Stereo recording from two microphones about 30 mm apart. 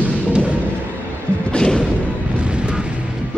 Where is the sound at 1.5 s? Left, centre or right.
Left.